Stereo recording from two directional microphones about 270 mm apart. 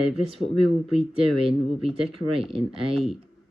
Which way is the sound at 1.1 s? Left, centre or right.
Right.